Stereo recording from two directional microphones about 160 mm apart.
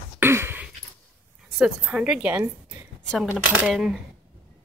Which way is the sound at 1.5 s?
5° right (ahead or behind).